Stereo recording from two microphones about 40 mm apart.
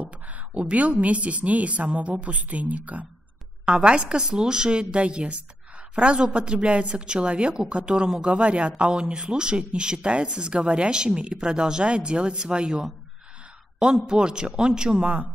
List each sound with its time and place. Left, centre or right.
0.0 s a woman's voice: right
3.6 s speech: right
14.0 s speech: centre